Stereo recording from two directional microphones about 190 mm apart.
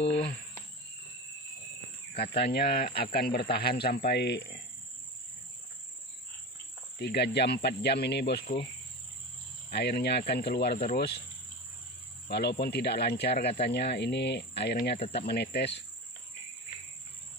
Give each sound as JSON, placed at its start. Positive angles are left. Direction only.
{"t": 0.2, "sound": "cricket", "side_deg": 35}
{"t": 2.3, "sound": "speech", "side_deg": 55}
{"t": 7.0, "sound": "speech", "side_deg": 60}
{"t": 9.7, "sound": "speech", "side_deg": 60}
{"t": 12.3, "sound": "speech", "side_deg": 60}